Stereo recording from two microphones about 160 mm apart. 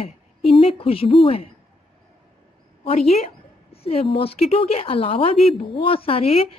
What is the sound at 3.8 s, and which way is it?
Speech, 35° left (ahead or behind).